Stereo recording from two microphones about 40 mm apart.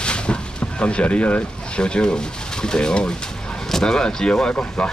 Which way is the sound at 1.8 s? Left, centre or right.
Left.